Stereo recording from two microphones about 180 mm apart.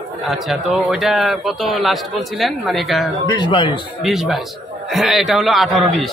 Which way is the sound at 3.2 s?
25° left (ahead or behind).